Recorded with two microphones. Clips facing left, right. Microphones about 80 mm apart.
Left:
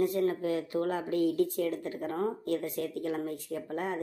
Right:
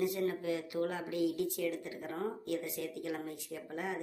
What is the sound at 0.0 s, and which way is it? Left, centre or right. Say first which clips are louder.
Speech: left 5 dB; left.